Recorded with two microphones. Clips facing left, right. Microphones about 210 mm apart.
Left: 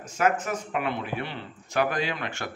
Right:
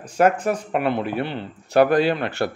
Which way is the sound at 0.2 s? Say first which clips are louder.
Right 7 dB; 35° right (ahead or behind).